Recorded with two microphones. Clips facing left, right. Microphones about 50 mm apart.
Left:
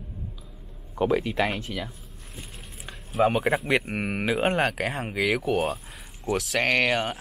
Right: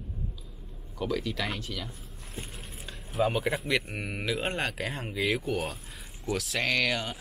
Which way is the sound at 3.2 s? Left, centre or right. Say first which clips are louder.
Left 6 dB; left.